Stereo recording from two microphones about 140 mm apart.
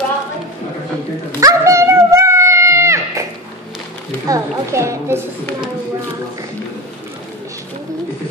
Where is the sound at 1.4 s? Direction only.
20° right (ahead or behind).